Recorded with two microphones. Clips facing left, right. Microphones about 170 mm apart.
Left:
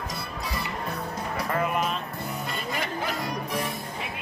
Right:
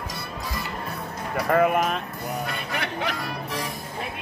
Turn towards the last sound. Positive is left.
turn(degrees=20)  # may be behind; listen again after turning